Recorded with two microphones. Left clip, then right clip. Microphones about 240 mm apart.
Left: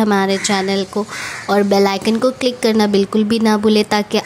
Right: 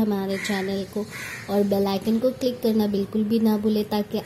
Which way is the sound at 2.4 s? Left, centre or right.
Left.